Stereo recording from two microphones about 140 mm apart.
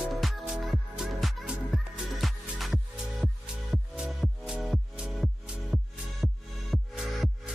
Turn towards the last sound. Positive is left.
turn(degrees=0)  # may be behind; listen again after turning